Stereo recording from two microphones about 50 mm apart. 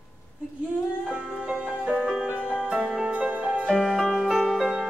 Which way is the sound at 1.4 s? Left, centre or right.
Centre.